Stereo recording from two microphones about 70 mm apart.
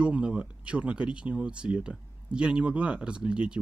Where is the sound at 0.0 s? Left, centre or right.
Centre.